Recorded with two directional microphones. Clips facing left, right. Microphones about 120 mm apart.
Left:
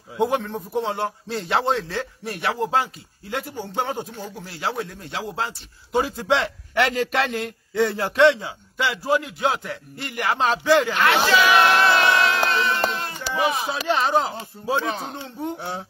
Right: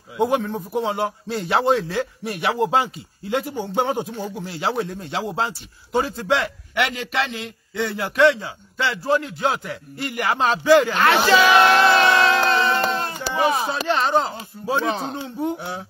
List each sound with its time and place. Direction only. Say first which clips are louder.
0.2 s a man's voice: right 2 dB; 5° right (ahead or behind); by 5.5 s 25° right (ahead or behind)
6.1 s a man's voice: even; 20° left (ahead or behind); by 7.8 s 50° left (ahead or behind)
7.8 s speech: left 1 dB; 30° left (ahead or behind)
9.0 s a man's voice: right 1 dB; 5° left (ahead or behind)
11.0 s music: right 2 dB; 30° right (ahead or behind)
13.0 s a sound: right 2 dB; 30° right (ahead or behind)
13.8 s a man's voice: even; centre (ahead or behind)
14.9 s speech: right 4 dB; 25° right (ahead or behind)
15.2 s a man's voice: right 5 dB; 5° right (ahead or behind)